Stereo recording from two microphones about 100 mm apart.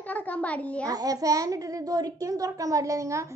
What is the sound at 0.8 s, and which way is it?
A child's voice, 35° right (ahead or behind).